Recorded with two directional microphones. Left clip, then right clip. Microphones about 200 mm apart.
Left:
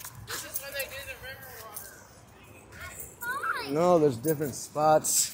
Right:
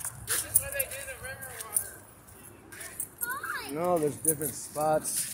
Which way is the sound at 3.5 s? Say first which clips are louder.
Left 6 dB; 45° left (ahead or behind).